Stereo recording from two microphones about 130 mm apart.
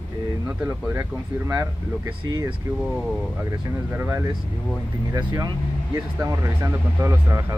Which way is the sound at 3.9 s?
15° right (ahead or behind).